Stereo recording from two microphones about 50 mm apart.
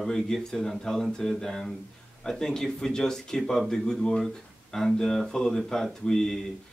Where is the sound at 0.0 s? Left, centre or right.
Centre.